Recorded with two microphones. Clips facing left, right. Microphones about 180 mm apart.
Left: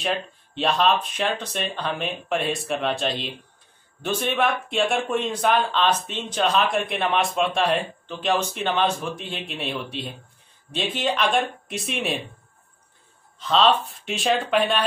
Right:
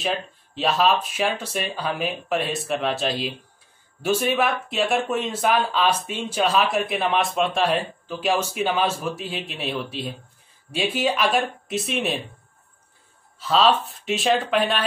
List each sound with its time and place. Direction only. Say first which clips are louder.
0.0 s speech: even; centre (ahead or behind)
13.4 s speech: even; 5° right (ahead or behind)